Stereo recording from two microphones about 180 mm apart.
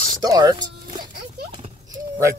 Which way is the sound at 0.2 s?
20° right (ahead or behind).